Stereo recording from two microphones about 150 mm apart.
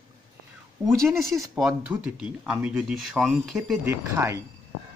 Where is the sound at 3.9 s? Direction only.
20° right (ahead or behind).